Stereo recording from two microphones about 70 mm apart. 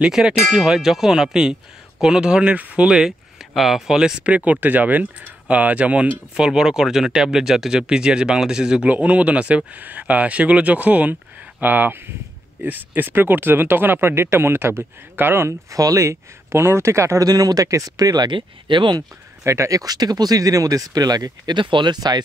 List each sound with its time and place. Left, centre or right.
0.0 s speech: centre
2.9 s speech: centre
4.5 s speech: right; by 8.8 s centre
8.8 s speech: right
15.7 s speech: right
17.3 s speech: right
19.4 s speech: right